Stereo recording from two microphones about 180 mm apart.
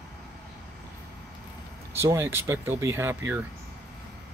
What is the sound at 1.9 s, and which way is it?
Speech, 15° right (ahead or behind).